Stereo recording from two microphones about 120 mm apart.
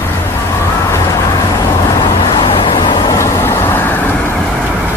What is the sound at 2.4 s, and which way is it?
Vehicle, 45° left (ahead or behind).